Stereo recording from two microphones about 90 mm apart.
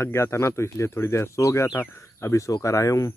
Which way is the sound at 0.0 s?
30° left (ahead or behind).